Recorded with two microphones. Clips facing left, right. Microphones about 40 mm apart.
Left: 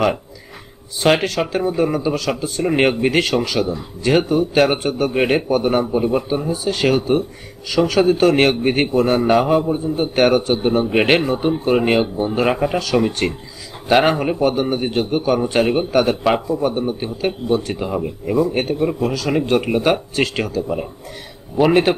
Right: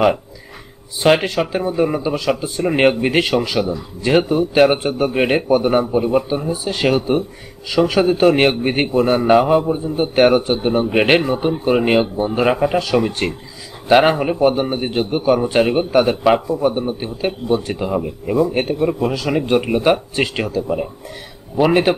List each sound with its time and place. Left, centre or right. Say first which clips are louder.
1.2 s a man's voice: even; centre
19.0 s a man's voice: right 1 dB; centre
19.4 s speech: right 2 dB; centre